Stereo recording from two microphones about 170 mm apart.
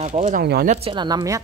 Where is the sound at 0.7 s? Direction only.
35° right (ahead or behind).